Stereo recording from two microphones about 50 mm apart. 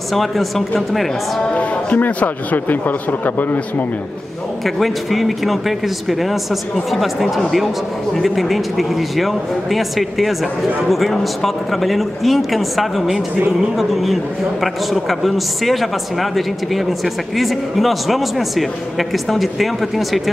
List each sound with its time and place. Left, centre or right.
0.1 s speech: centre
1.5 s speech: left
4.6 s speech: centre
14.6 s speech: centre